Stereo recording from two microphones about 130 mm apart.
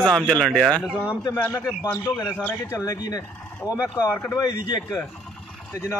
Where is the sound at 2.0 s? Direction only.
30° left (ahead or behind).